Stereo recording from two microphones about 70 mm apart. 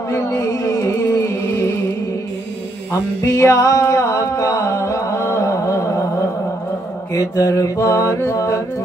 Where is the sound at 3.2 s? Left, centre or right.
Left.